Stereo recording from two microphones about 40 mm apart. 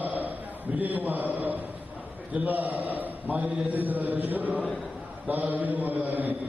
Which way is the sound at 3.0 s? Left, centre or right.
Right.